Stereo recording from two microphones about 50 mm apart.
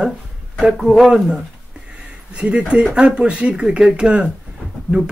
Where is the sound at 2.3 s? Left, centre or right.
Right.